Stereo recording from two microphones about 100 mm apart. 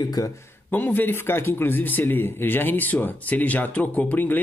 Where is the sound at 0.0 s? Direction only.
35° left (ahead or behind).